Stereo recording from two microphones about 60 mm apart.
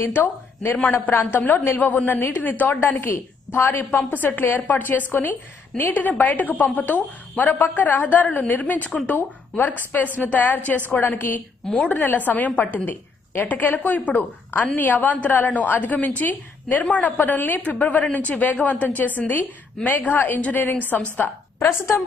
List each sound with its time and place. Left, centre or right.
0.1 s a woman's voice: left
21.5 s a woman's voice: left